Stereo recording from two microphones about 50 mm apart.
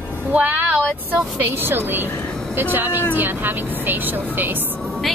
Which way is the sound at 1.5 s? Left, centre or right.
Right.